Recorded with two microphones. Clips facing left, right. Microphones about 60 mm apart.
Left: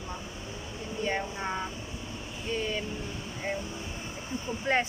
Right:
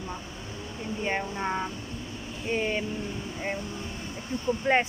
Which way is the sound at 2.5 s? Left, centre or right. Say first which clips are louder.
Right 4 dB; right.